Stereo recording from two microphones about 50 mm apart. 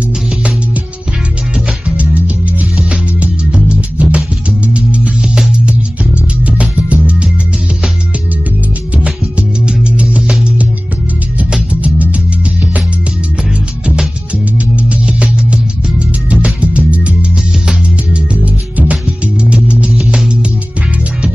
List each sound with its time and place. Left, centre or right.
1.5 s music: right
6.4 s music: right
9.7 s music: right
11.3 s music: right
14.8 s music: right